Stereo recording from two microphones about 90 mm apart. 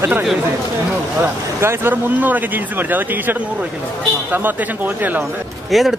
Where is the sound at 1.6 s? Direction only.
25° right (ahead or behind).